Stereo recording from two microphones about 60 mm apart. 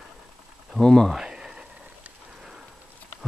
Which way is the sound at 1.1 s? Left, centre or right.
Centre.